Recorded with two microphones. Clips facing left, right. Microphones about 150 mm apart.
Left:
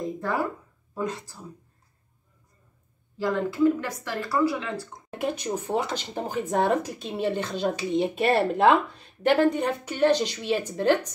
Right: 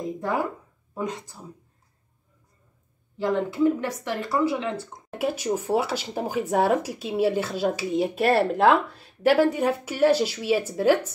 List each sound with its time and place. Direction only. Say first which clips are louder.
0.2 s speech: right 3 dB; 15° right (ahead or behind)
3.2 s speech: right 1 dB; 20° right (ahead or behind)
5.2 s speech: right 3 dB; 5° right (ahead or behind)